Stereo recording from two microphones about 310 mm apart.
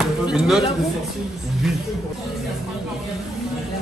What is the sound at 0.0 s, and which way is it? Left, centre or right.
Chop, centre.